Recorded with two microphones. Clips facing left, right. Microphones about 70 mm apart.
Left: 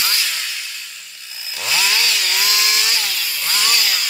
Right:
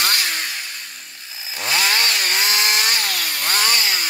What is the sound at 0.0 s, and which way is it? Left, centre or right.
Chainsaw, right.